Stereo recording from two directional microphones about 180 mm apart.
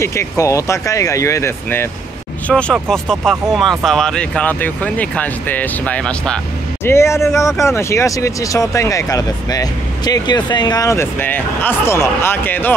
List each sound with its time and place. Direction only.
0.0 s speech: 15° left (ahead or behind)